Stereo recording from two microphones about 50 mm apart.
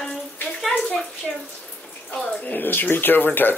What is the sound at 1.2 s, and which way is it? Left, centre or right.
Speech, centre.